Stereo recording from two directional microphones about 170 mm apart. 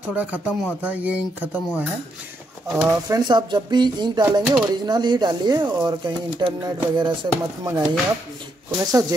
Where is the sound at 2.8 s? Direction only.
20° right (ahead or behind).